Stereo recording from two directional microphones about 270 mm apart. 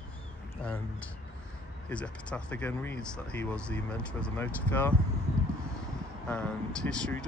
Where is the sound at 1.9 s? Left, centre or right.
Centre.